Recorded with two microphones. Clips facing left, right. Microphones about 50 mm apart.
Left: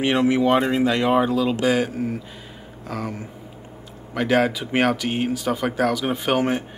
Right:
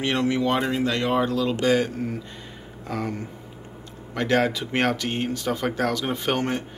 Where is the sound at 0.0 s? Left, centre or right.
Centre.